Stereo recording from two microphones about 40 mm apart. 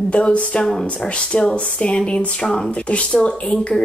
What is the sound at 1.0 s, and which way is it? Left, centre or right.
Speech, left.